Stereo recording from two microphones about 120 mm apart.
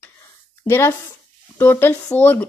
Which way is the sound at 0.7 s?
20° left (ahead or behind).